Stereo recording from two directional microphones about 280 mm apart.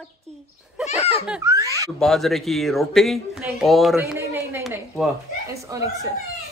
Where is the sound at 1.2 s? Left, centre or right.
Centre.